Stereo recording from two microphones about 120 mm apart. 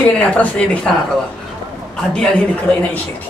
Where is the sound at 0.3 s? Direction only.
10° left (ahead or behind).